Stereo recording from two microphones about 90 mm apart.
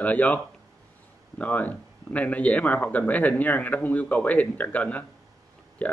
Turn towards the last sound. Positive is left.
turn(degrees=15)  # may be behind; listen again after turning